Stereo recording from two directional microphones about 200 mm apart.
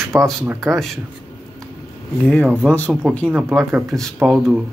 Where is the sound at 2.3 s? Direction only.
5° left (ahead or behind).